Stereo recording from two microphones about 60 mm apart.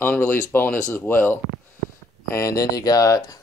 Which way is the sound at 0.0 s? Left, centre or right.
Left.